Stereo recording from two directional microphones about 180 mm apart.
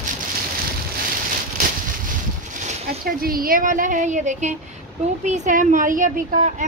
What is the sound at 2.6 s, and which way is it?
Speech, 55° right (ahead or behind).